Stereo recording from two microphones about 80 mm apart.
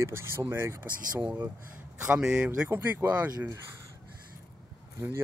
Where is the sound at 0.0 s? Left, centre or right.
Right.